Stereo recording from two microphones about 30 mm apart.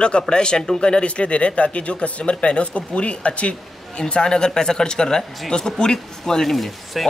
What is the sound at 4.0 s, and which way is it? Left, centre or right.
Speech, left.